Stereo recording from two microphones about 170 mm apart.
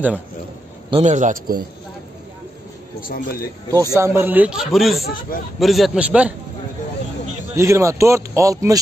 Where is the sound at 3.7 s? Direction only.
20° right (ahead or behind).